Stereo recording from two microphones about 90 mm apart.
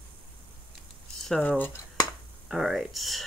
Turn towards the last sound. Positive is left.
turn(degrees=0)  # may be behind; listen again after turning